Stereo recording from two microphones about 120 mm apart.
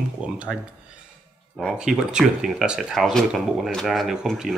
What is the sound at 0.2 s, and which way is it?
Speech, 10° right (ahead or behind).